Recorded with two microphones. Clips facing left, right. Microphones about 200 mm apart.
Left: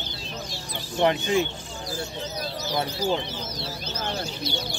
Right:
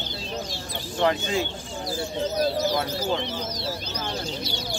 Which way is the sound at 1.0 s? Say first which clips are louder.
Left 2 dB; 20° left (ahead or behind).